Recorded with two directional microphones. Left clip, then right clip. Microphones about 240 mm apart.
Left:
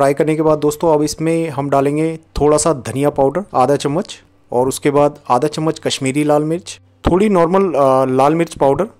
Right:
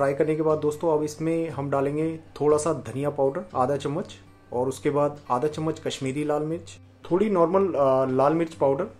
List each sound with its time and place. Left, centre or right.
0.0 s speech: left